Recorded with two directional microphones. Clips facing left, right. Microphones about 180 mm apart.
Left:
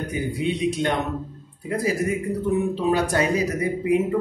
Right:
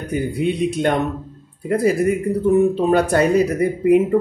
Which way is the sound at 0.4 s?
55° right (ahead or behind).